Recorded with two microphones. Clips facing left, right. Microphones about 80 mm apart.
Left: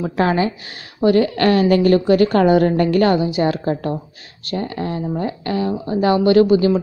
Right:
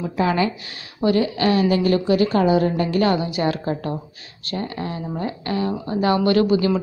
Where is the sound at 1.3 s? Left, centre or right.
Left.